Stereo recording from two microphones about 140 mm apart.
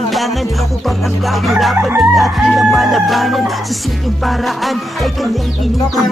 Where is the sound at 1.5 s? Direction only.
Centre (ahead or behind).